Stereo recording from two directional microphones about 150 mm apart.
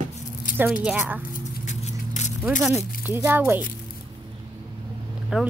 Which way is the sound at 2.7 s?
15° right (ahead or behind).